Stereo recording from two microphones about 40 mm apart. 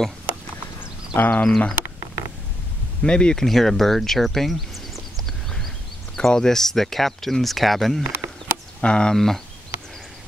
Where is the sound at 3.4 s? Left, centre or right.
Centre.